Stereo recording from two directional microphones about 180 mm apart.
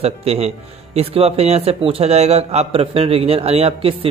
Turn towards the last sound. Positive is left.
turn(degrees=-30)  # may be behind; listen again after turning